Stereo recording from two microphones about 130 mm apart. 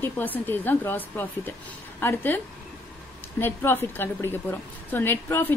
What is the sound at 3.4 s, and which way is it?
Speech, 15° left (ahead or behind).